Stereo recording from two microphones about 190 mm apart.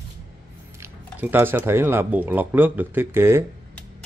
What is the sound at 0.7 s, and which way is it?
Squish, 15° right (ahead or behind).